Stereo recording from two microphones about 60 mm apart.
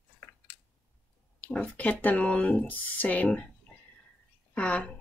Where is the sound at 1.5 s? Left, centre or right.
Left.